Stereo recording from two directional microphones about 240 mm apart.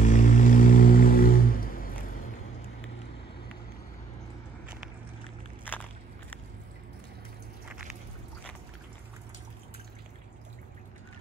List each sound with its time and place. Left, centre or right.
0.0 s music: left